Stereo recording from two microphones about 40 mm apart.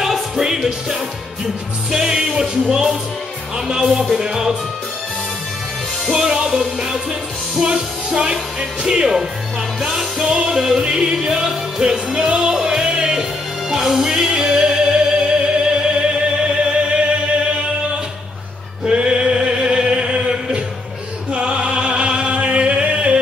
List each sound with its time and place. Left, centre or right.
0.0 s music: centre
6.1 s music: centre
18.9 s chant: right
21.3 s music: right